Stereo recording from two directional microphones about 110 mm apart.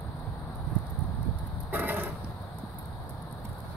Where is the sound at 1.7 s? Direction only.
15° right (ahead or behind).